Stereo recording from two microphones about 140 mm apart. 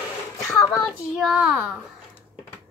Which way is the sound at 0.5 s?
20° left (ahead or behind).